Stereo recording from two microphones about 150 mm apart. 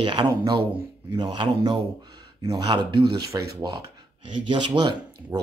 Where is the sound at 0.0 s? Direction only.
30° right (ahead or behind).